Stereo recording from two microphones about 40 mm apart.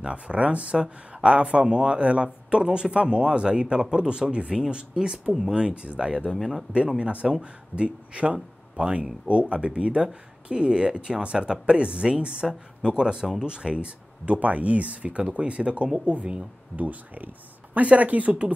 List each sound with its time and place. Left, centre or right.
0.0 s speech: right
6.3 s speech: centre
7.1 s speech: right
16.8 s speech: right